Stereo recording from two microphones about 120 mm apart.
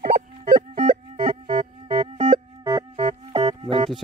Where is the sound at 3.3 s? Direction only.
50° right (ahead or behind).